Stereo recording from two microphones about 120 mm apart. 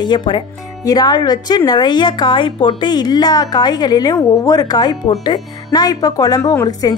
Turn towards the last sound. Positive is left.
turn(degrees=30)  # may be behind; listen again after turning